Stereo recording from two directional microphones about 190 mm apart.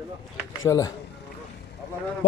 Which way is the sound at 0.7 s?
15° left (ahead or behind).